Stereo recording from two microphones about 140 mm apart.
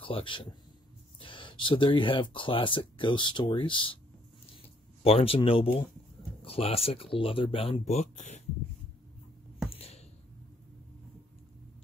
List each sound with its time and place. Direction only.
0.0 s speech: 40° left (ahead or behind)
5.0 s speech: 45° left (ahead or behind)
9.8 s a sound: 45° left (ahead or behind)